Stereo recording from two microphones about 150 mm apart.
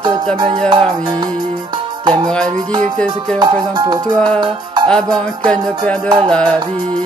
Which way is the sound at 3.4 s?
30° right (ahead or behind).